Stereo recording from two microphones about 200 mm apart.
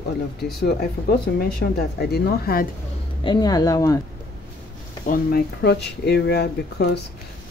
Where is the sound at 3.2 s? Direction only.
20° left (ahead or behind).